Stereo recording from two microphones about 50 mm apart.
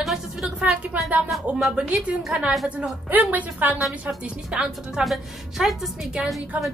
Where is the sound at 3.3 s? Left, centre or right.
Right.